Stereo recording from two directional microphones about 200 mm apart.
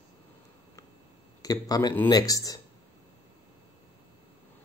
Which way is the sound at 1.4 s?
20° left (ahead or behind).